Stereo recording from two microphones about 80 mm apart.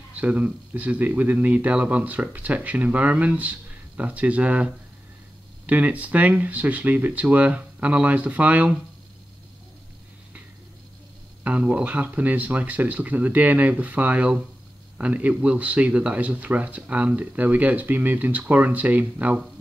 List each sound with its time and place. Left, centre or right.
0.1 s speech: centre
11.4 s speech: centre